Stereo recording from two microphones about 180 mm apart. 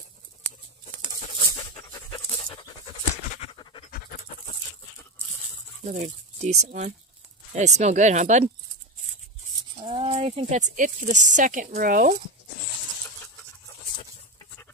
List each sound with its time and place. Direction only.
1.8 s pant: 25° left (ahead or behind)
3.9 s pant: 50° left (ahead or behind)
5.9 s speech: 40° right (ahead or behind)
9.8 s speech: 30° right (ahead or behind); by 12.2 s 50° right (ahead or behind)